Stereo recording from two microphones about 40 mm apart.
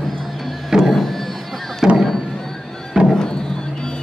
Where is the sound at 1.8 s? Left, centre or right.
Centre.